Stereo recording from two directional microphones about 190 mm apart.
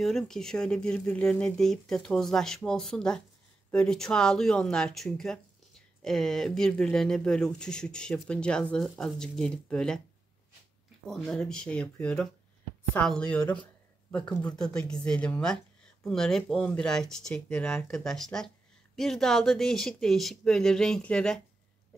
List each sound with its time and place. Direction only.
0.0 s speech: centre (ahead or behind)
11.1 s speech: 5° left (ahead or behind)